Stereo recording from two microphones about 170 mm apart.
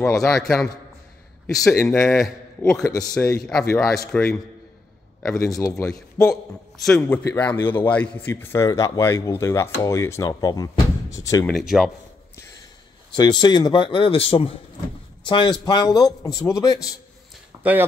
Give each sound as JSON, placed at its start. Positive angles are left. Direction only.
{"t": 0.0, "sound": "a man's voice", "side_deg": 0}
{"t": 3.0, "sound": "a man's voice", "side_deg": 15}
{"t": 5.4, "sound": "a man's voice", "side_deg": 15}
{"t": 11.4, "sound": "a man's voice", "side_deg": 0}
{"t": 13.1, "sound": "speech", "side_deg": 25}